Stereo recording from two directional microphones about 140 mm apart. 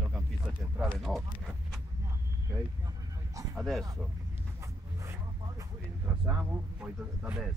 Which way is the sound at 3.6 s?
Centre (ahead or behind).